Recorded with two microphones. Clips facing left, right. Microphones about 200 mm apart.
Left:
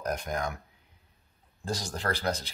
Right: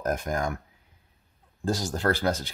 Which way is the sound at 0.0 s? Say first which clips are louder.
Right 4 dB; 50° right (ahead or behind).